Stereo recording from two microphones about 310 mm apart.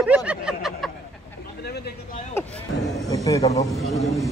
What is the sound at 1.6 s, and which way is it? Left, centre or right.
Speech, left.